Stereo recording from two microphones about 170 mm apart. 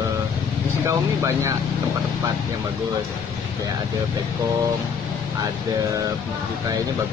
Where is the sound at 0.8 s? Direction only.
15° right (ahead or behind).